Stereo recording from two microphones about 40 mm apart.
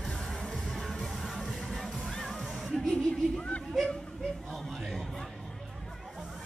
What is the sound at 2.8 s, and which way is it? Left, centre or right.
Music, left.